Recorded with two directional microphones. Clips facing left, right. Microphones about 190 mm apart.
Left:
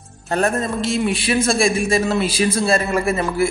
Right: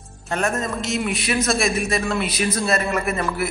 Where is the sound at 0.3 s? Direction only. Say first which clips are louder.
Left 4 dB; 35° left (ahead or behind).